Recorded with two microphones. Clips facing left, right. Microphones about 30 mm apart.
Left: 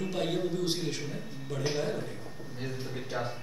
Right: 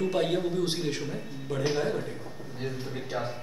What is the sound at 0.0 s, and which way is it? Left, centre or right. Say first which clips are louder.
A man's voice: right 4 dB; centre.